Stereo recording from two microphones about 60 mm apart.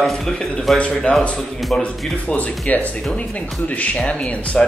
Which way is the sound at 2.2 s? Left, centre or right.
Left.